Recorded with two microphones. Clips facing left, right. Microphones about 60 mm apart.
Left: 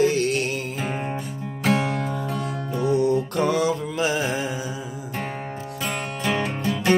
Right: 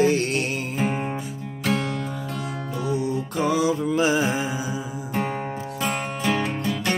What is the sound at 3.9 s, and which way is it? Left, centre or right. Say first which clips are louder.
Music: right 3 dB; right.